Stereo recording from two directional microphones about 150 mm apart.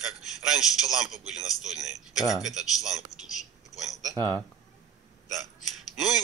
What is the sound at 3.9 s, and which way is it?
Speech, 20° left (ahead or behind).